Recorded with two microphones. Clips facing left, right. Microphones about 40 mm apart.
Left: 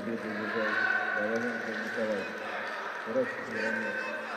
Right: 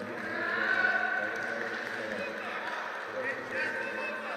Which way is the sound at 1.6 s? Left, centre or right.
Centre.